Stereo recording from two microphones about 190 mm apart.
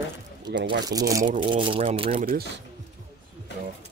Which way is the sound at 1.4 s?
25° right (ahead or behind).